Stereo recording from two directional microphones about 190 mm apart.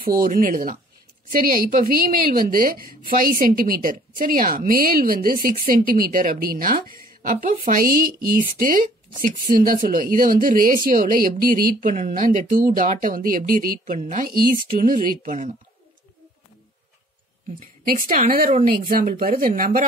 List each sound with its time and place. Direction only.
0.0 s a woman's voice: 50° right (ahead or behind)
17.6 s a woman's voice: 45° right (ahead or behind)